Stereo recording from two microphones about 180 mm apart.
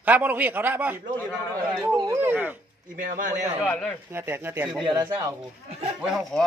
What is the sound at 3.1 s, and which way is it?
Speech, 45° right (ahead or behind).